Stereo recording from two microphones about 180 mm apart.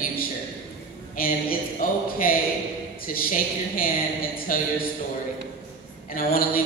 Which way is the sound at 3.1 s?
50° left (ahead or behind).